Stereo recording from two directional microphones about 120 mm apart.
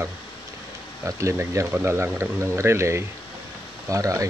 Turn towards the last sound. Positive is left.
turn(degrees=-25)  # may be behind; listen again after turning